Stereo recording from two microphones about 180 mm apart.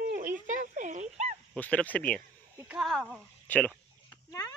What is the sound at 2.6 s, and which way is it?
Speech, 10° right (ahead or behind).